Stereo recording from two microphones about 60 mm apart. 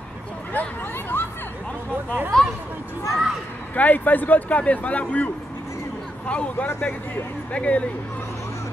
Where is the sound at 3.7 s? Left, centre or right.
Left.